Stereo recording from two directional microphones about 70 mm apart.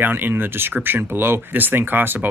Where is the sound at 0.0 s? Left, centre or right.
Right.